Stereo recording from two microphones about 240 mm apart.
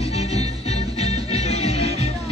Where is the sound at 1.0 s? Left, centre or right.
Left.